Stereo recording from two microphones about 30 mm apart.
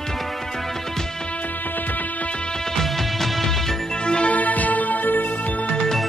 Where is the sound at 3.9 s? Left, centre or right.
Left.